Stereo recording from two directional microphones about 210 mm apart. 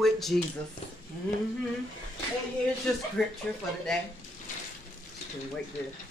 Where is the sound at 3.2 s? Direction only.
Centre (ahead or behind).